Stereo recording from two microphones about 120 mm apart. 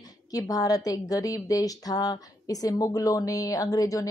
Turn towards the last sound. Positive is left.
turn(degrees=30)  # may be behind; listen again after turning